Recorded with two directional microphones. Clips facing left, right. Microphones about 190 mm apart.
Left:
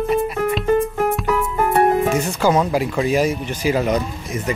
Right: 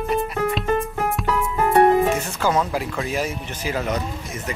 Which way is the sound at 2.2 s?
15° left (ahead or behind).